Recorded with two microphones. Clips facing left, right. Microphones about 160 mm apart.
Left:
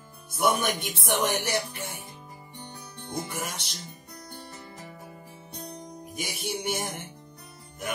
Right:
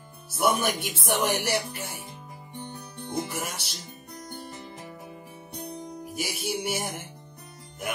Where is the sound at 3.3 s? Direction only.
10° right (ahead or behind).